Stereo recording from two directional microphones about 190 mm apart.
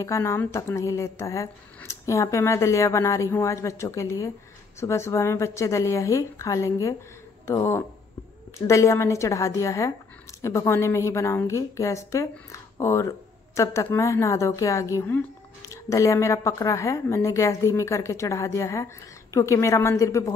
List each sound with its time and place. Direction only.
0.0 s a woman's voice: 15° left (ahead or behind)